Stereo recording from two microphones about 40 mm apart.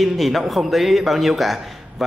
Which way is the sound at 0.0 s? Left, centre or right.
Centre.